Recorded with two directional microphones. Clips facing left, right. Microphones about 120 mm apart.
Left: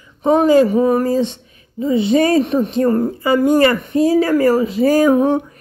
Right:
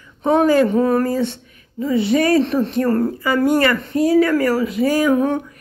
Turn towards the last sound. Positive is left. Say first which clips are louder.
# left 4 dB
turn(degrees=30)  # may be behind; listen again after turning